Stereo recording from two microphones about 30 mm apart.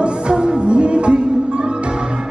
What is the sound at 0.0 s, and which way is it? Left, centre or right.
Music, right.